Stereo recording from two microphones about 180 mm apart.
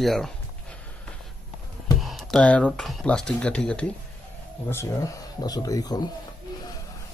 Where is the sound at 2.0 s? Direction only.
Centre (ahead or behind); by 6.0 s 20° left (ahead or behind).